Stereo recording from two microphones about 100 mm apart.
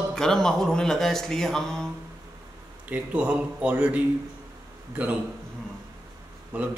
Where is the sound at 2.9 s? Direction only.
15° right (ahead or behind).